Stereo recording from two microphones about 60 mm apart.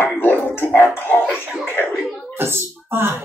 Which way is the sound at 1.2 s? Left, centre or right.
Centre.